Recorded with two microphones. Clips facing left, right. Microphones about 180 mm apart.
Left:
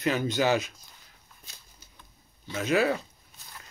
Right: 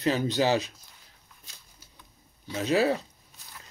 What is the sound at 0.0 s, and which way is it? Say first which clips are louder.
Speech: right 1 dB; 30° right (ahead or behind).